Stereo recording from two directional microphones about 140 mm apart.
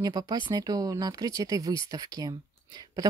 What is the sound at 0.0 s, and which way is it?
Speech, 30° right (ahead or behind).